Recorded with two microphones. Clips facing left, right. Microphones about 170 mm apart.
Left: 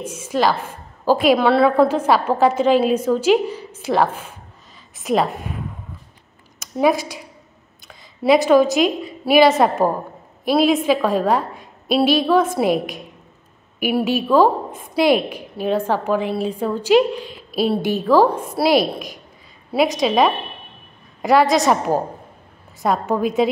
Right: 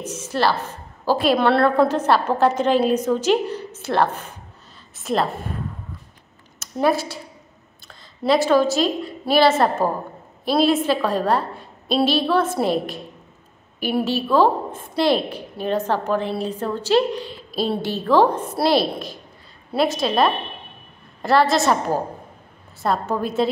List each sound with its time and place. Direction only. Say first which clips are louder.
0.0 s a woman's voice: left 2 dB; 10° left (ahead or behind)
6.6 s a woman's voice: left 2 dB; 15° left (ahead or behind)
7.9 s a sound: left 4 dB; 5° left (ahead or behind)
8.4 s a woman's voice: left 3 dB; 15° left (ahead or behind)
13.7 s a woman's voice: left 3 dB; 10° left (ahead or behind)